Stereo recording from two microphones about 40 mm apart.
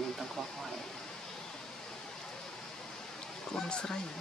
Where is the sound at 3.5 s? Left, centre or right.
Centre.